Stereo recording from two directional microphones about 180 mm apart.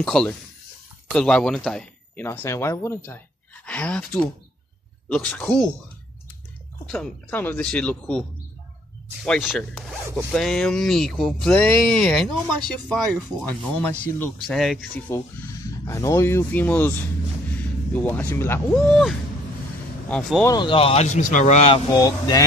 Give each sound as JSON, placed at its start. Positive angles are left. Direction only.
{"t": 0.0, "sound": "speech", "side_deg": 0}
{"t": 6.9, "sound": "speech", "side_deg": 5}
{"t": 15.1, "sound": "speech", "side_deg": 15}
{"t": 17.9, "sound": "speech", "side_deg": 10}
{"t": 18.7, "sound": "speech", "side_deg": 0}
{"t": 20.4, "sound": "speech", "side_deg": 25}
{"t": 21.9, "sound": "speech", "side_deg": 20}